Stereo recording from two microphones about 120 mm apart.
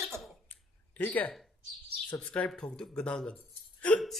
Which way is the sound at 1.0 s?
15° left (ahead or behind).